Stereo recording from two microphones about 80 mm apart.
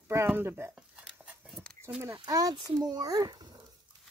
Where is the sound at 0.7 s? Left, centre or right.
Centre.